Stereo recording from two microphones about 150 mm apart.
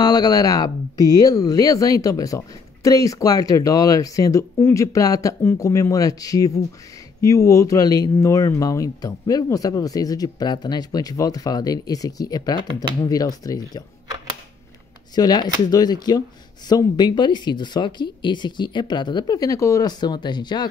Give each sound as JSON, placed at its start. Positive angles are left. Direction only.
{"t": 0.0, "sound": "speech", "side_deg": 25}
{"t": 15.1, "sound": "speech", "side_deg": 25}